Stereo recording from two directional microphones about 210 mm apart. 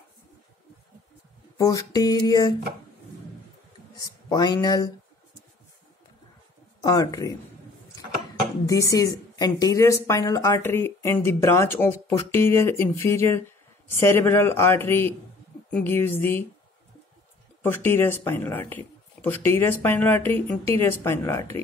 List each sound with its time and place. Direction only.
1.6 s a woman's voice: 15° left (ahead or behind)
4.0 s speech: 20° left (ahead or behind)
6.8 s a woman's voice: 15° left (ahead or behind)
8.6 s a woman's voice: 15° left (ahead or behind)
17.6 s a woman's voice: 10° left (ahead or behind)